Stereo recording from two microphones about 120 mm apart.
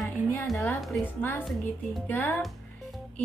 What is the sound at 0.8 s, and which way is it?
Speech, centre (ahead or behind).